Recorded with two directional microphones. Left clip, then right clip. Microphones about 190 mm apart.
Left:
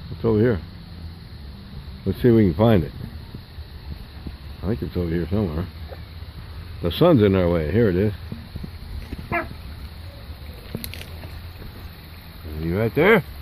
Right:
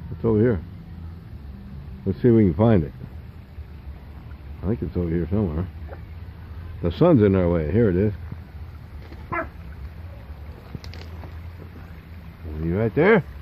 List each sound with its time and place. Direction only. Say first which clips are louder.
0.2 s speech: left 1 dB; 10° left (ahead or behind)
2.0 s speech: left 1 dB; 10° left (ahead or behind)
4.6 s speech: even; 5° left (ahead or behind)
6.8 s speech: left 1 dB; centre (ahead or behind)
12.6 s a sound: left 1 dB; 5° left (ahead or behind)